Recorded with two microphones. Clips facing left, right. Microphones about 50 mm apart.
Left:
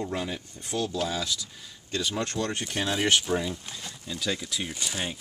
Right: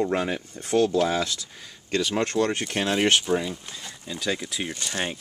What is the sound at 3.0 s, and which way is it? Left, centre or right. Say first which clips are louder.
Speech: right 2 dB; centre.